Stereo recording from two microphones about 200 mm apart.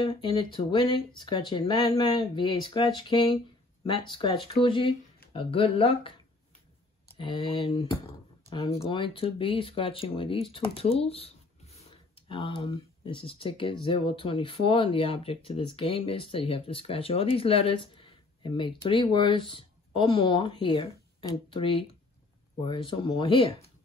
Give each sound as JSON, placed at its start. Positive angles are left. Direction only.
{"t": 0.0, "sound": "speech", "side_deg": 25}
{"t": 7.2, "sound": "speech", "side_deg": 25}